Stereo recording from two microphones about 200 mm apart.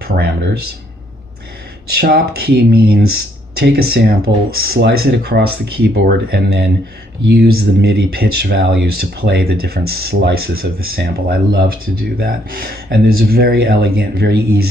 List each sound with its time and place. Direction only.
0.0 s speech: 50° right (ahead or behind)
2.0 s speech: 50° right (ahead or behind)